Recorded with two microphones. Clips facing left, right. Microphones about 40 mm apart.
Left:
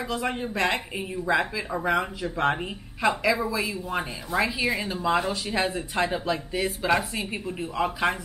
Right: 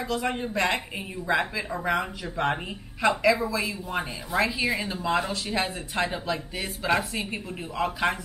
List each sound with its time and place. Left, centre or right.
0.0 s a woman's voice: centre